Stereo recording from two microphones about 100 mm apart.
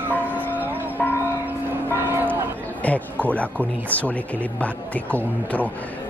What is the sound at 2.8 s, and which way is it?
Speech, 15° left (ahead or behind).